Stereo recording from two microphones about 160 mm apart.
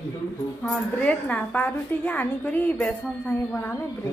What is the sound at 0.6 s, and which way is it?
A woman's voice, 5° left (ahead or behind).